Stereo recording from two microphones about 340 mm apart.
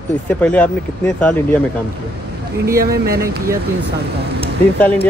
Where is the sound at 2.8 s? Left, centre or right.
Right.